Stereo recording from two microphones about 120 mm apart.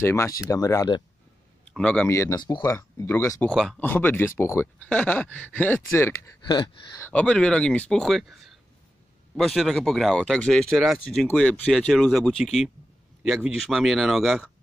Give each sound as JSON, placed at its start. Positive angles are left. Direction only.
{"t": 0.0, "sound": "speech", "side_deg": 20}
{"t": 1.7, "sound": "a man's voice", "side_deg": 10}
{"t": 2.0, "sound": "speech", "side_deg": 25}
{"t": 2.3, "sound": "speech", "side_deg": 35}
{"t": 2.6, "sound": "speech", "side_deg": 20}
{"t": 3.5, "sound": "speech", "side_deg": 0}
{"t": 3.8, "sound": "speech", "side_deg": 15}
{"t": 6.4, "sound": "speech", "side_deg": 40}
{"t": 7.0, "sound": "speech", "side_deg": 10}
{"t": 9.4, "sound": "speech", "side_deg": 0}
{"t": 11.2, "sound": "speech", "side_deg": 10}